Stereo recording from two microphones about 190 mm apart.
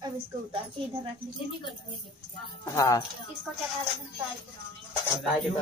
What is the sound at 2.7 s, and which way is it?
Speech, 15° left (ahead or behind).